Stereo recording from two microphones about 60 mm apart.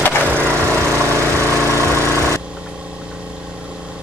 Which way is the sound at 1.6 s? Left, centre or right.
Left.